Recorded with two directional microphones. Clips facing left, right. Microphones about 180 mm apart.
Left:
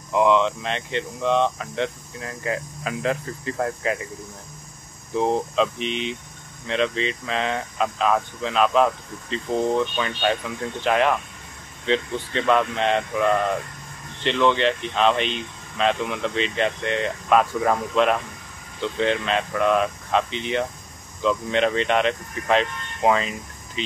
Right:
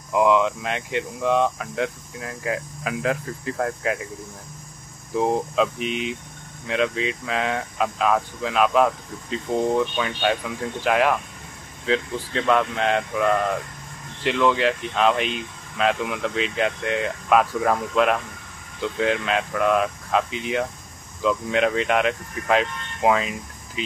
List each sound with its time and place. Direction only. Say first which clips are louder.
0.1 s speech: even; 5° right (ahead or behind)
5.1 s speech: even; 5° right (ahead or behind)